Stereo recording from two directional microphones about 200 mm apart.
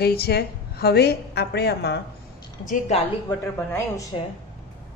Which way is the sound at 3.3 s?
10° left (ahead or behind).